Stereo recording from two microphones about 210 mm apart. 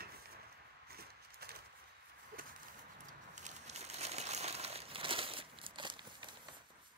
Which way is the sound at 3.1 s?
35° right (ahead or behind).